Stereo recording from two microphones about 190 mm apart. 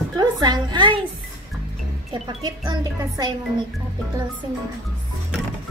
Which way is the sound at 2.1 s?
20° right (ahead or behind).